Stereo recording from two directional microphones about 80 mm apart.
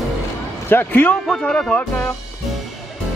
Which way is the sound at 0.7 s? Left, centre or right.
Left.